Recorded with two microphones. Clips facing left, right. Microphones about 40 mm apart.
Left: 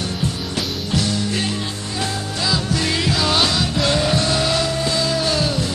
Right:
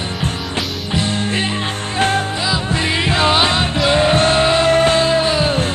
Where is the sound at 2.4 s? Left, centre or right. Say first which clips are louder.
Right 2 dB; right.